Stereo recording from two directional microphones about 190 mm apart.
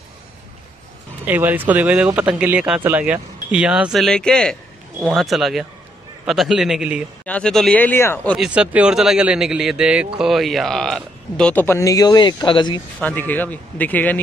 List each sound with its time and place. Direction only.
1.2 s speech: 10° right (ahead or behind); by 8.5 s 5° left (ahead or behind)
8.5 s speech: 5° right (ahead or behind); by 12.8 s 25° left (ahead or behind)
13.3 s speech: 10° left (ahead or behind)